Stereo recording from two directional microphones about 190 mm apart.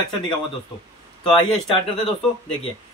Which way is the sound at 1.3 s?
25° left (ahead or behind).